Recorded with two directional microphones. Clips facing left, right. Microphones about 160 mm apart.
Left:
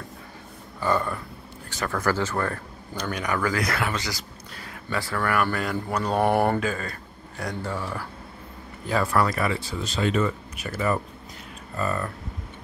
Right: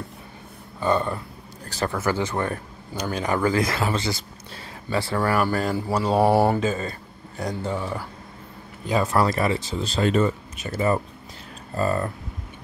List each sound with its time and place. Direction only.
0.7 s speech: 20° right (ahead or behind)
3.1 s speech: 30° right (ahead or behind)
5.8 s mantra: 5° right (ahead or behind)
6.6 s speech: 25° right (ahead or behind)